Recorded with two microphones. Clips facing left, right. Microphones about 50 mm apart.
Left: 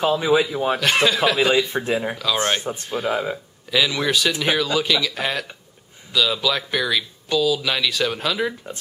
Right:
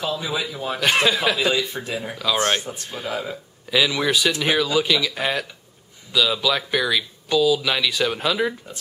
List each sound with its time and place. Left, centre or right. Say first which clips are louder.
0.0 s speech: left 8 dB; left
0.7 s speech: right 2 dB; centre
1.3 s speech: left 3 dB; left
2.1 s speech: even; centre
2.9 s speech: left 5 dB; centre
3.7 s a man's voice: even; centre